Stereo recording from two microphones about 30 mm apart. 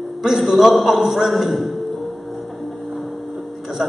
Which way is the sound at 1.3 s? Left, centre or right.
Centre.